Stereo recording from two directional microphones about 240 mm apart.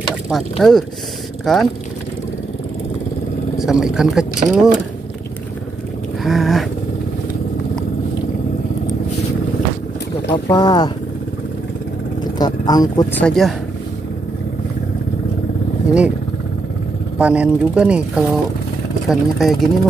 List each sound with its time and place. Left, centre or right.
0.3 s speech: centre
3.5 s speech: centre
6.2 s speech: centre
10.3 s speech: centre
12.4 s speech: centre
13.2 s speech: centre
17.2 s speech: centre